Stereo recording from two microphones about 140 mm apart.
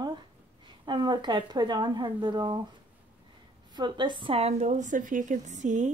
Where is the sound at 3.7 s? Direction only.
35° right (ahead or behind).